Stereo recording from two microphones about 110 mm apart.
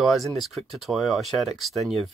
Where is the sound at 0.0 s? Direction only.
Centre (ahead or behind).